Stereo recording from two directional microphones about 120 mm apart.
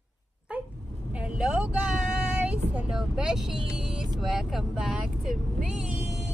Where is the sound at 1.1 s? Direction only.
10° right (ahead or behind).